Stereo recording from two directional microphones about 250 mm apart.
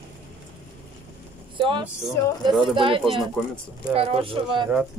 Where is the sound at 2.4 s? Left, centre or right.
Centre.